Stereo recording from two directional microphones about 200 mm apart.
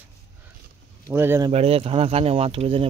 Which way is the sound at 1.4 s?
30° right (ahead or behind).